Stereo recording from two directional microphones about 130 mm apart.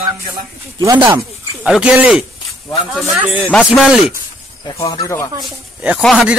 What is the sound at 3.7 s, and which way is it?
Speech, 5° right (ahead or behind).